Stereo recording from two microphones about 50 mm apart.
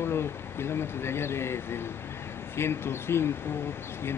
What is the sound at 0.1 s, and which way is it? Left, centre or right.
Speech, left.